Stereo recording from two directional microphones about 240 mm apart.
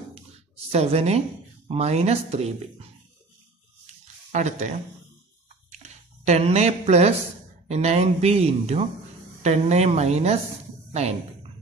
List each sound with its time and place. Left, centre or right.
0.7 s speech: right
4.3 s speech: right
5.7 s a sound: right
7.6 s speech: right